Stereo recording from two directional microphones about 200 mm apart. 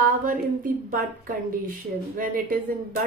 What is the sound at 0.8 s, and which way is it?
Speech, 45° right (ahead or behind).